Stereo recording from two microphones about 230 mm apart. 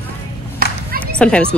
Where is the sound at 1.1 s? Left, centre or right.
Centre.